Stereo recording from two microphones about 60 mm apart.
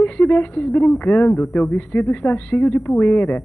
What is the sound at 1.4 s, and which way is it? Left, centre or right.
A woman's voice, left.